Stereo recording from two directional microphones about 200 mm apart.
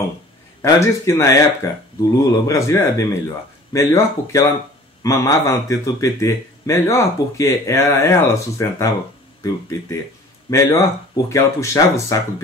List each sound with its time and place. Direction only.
0.6 s a man's voice: 15° left (ahead or behind)